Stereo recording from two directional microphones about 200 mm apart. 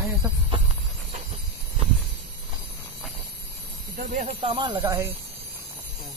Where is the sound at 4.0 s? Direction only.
35° right (ahead or behind); by 5.1 s 15° right (ahead or behind).